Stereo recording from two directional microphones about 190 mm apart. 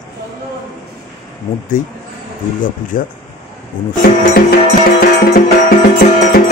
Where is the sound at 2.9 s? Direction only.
45° left (ahead or behind).